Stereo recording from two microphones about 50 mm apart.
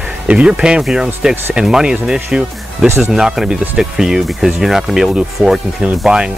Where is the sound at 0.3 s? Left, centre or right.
Right.